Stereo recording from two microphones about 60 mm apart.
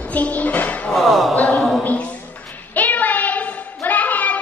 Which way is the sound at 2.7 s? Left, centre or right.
Left.